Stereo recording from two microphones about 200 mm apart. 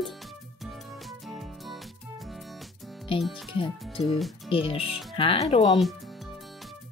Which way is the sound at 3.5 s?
25° left (ahead or behind).